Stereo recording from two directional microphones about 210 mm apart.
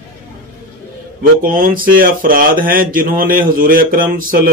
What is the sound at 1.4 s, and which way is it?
A man's voice, 40° right (ahead or behind).